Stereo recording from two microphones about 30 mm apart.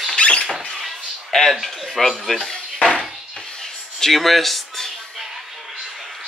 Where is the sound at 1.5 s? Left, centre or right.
Centre.